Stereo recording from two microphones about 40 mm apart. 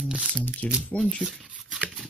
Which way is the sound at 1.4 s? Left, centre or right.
Right.